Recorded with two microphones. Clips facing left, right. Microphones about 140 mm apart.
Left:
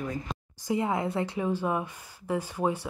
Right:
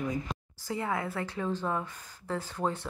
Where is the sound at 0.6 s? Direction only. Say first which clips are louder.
Left 5 dB; 20° left (ahead or behind).